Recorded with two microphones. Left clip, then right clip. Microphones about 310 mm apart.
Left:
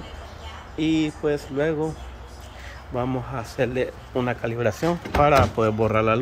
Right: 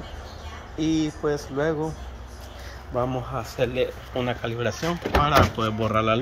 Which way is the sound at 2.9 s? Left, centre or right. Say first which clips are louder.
Right 1 dB; centre.